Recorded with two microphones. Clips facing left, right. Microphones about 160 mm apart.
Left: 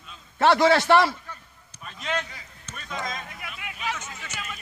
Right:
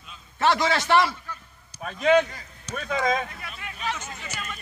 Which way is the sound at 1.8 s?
55° right (ahead or behind).